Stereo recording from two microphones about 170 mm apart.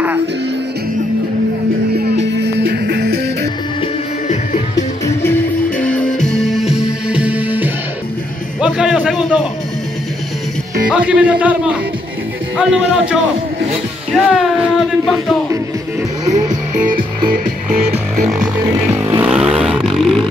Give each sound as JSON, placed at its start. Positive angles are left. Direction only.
{"t": 2.1, "sound": "music", "side_deg": -85}
{"t": 5.9, "sound": "music", "side_deg": 5}
{"t": 10.9, "sound": "a man's voice", "side_deg": -10}
{"t": 12.5, "sound": "music", "side_deg": -5}
{"t": 14.1, "sound": "a sound", "side_deg": -5}
{"t": 16.3, "sound": "music", "side_deg": -20}
{"t": 18.2, "sound": "music", "side_deg": -5}
{"t": 19.0, "sound": "vehicle", "side_deg": -10}